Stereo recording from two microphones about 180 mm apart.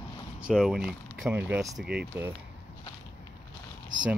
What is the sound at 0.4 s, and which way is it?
Speech, 5° right (ahead or behind).